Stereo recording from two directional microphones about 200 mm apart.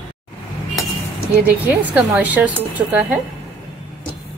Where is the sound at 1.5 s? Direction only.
10° right (ahead or behind).